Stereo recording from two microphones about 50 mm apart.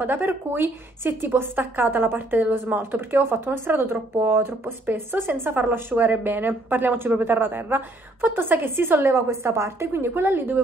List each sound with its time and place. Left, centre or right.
0.0 s speech: right